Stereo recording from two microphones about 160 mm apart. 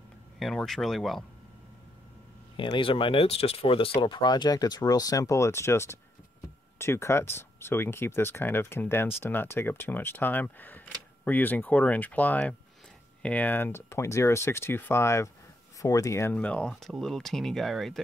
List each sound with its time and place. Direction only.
0.4 s speech: centre (ahead or behind)
2.5 s speech: 30° left (ahead or behind); by 18.0 s centre (ahead or behind)